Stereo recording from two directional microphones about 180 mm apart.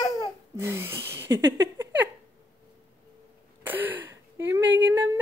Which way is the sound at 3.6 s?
10° right (ahead or behind).